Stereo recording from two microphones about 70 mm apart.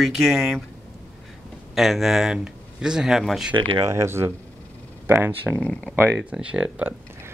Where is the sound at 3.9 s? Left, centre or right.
Right.